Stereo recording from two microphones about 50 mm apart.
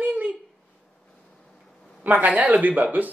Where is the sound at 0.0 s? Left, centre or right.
Right.